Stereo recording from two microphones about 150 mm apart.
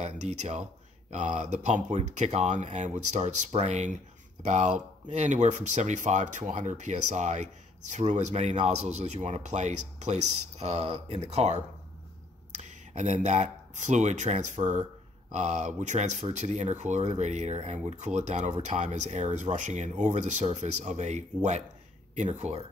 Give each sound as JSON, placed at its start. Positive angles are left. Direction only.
{"t": 0.0, "sound": "speech", "side_deg": -50}
{"t": 12.6, "sound": "speech", "side_deg": -50}